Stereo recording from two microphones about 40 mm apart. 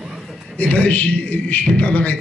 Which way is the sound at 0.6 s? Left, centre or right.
Left.